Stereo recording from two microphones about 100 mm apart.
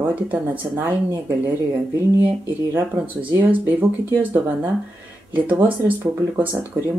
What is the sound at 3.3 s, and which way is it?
Speech, 20° right (ahead or behind).